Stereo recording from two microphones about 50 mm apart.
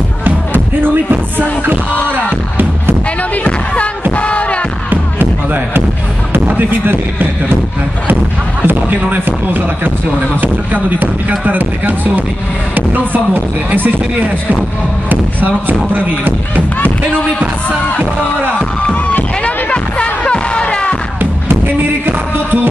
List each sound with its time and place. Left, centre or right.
3.4 s music: left
6.4 s a sound: right
8.6 s music: right
10.4 s speech: right
19.0 s music: left
21.2 s music: right